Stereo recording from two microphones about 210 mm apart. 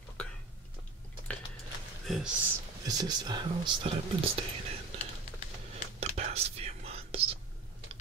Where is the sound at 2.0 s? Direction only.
Centre (ahead or behind).